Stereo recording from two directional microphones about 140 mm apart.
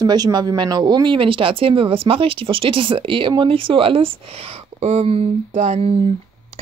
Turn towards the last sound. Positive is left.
turn(degrees=-50)  # may be behind; listen again after turning